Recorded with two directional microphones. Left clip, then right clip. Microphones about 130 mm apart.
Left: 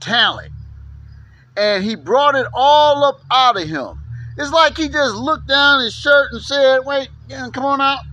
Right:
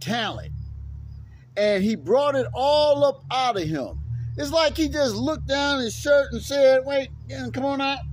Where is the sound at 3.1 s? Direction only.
35° right (ahead or behind).